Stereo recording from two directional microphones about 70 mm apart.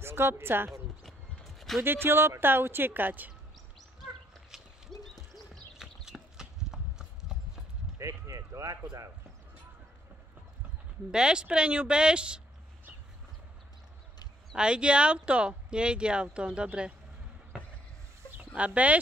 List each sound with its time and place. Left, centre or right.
0.0 s a woman's voice: right
1.0 s horse: centre
1.8 s a woman's voice: right
5.8 s clip-clop: centre
8.0 s a sound: right
11.1 s speech: centre
14.5 s speech: centre
18.4 s speech: right